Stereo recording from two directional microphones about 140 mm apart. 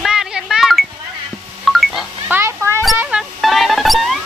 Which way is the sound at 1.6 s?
Centre (ahead or behind).